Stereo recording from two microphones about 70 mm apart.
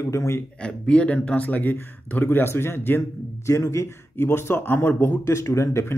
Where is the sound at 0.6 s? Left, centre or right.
Centre.